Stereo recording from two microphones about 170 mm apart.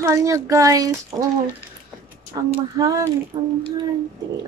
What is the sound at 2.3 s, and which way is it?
Speech, 20° right (ahead or behind).